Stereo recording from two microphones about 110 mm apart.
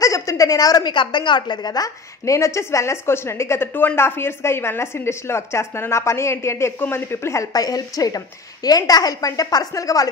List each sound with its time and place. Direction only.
0.0 s a woman's voice: 30° left (ahead or behind)